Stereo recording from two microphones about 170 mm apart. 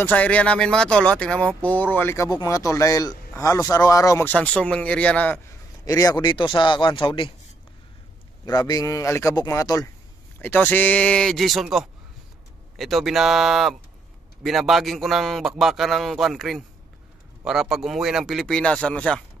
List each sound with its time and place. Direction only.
0.0 s speech: 10° left (ahead or behind)
4.3 s speech: 5° left (ahead or behind)
5.9 s speech: 20° left (ahead or behind)
8.5 s a man's voice: 20° left (ahead or behind); by 19.2 s 5° left (ahead or behind)